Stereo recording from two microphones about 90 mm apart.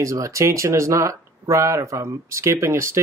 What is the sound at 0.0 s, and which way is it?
Speech, 35° right (ahead or behind).